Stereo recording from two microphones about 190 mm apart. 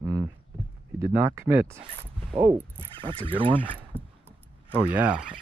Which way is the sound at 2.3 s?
30° right (ahead or behind).